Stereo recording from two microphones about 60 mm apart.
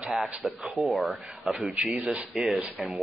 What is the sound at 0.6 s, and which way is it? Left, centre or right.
Speech, right.